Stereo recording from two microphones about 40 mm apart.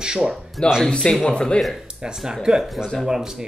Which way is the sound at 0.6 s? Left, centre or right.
Centre.